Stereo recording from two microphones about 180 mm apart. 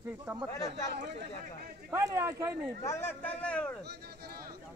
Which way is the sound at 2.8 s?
15° left (ahead or behind).